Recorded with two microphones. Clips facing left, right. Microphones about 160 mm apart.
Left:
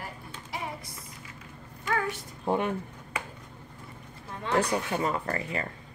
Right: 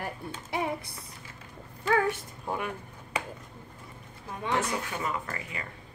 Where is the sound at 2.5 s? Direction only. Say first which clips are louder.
Left 6 dB; 25° left (ahead or behind).